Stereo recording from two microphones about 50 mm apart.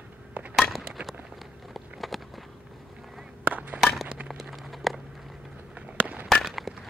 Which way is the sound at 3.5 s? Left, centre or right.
Right.